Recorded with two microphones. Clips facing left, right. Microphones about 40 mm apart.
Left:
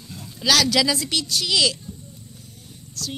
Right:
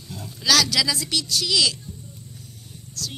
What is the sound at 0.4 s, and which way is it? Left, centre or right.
A woman's voice, left.